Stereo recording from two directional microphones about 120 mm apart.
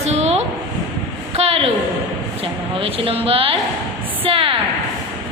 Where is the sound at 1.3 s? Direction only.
55° right (ahead or behind).